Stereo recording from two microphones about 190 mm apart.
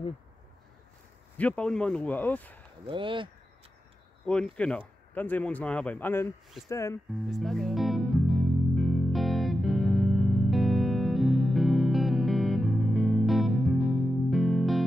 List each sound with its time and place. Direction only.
1.4 s speech: 5° left (ahead or behind)
2.9 s speech: 25° right (ahead or behind)
4.3 s speech: 5° left (ahead or behind)
7.2 s music: centre (ahead or behind)